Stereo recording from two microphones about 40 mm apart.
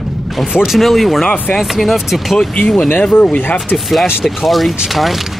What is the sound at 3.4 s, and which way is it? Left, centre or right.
Speech, left.